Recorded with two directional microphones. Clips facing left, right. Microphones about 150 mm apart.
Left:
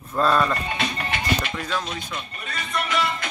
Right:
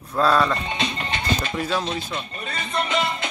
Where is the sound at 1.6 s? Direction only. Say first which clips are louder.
Right 4 dB; 10° right (ahead or behind).